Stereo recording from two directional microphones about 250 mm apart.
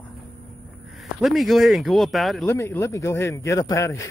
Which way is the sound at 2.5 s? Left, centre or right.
Centre.